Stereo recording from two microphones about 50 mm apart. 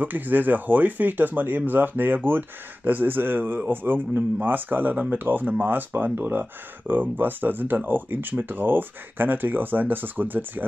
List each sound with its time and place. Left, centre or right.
0.0 s speech: right
4.9 s speech: right
5.2 s speech: right